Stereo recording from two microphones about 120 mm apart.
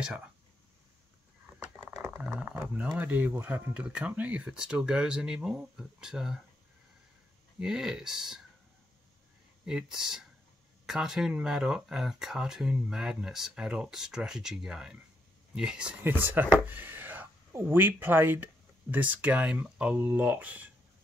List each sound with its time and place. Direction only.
2.0 s a sound: 15° right (ahead or behind)
3.0 s speech: 15° right (ahead or behind)
7.6 s speech: 5° right (ahead or behind)
9.7 s speech: 5° right (ahead or behind)